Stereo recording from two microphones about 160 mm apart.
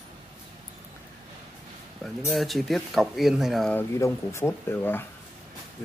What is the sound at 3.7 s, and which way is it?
Speech, 15° left (ahead or behind).